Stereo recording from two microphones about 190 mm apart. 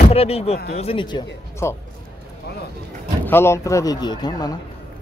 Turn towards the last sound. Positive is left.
turn(degrees=20)  # may be behind; listen again after turning